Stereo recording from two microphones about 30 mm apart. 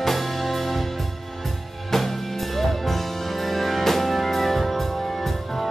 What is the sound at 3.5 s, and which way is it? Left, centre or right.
Music, centre.